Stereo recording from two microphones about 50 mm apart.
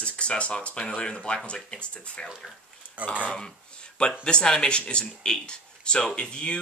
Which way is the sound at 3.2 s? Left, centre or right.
Centre.